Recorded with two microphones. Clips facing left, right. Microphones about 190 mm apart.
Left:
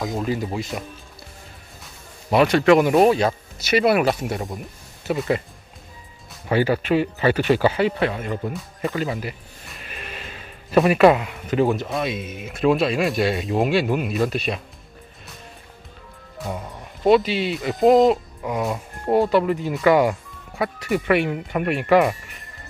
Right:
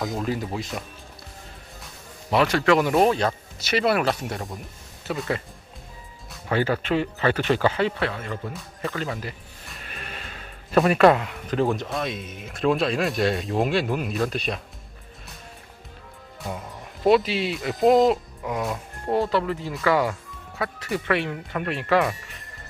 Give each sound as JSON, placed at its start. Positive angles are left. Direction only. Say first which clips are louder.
{"t": 0.0, "sound": "speech", "louder": "left 2 dB", "side_deg": 0}
{"t": 2.3, "sound": "speech", "louder": "left 4 dB", "side_deg": 20}
{"t": 6.5, "sound": "speech", "louder": "left 4 dB", "side_deg": 10}
{"t": 10.7, "sound": "speech", "louder": "left 2 dB", "side_deg": 5}
{"t": 17.0, "sound": "speech", "louder": "left 2 dB", "side_deg": 0}
{"t": 19.1, "sound": "speech", "louder": "left 5 dB", "side_deg": 15}